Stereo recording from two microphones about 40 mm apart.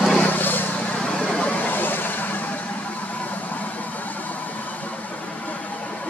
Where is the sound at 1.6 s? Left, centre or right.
Left.